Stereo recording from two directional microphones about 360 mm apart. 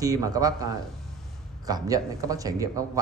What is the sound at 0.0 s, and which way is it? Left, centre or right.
Speech, centre.